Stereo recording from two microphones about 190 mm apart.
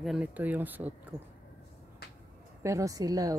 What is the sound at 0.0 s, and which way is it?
Speech, 5° right (ahead or behind).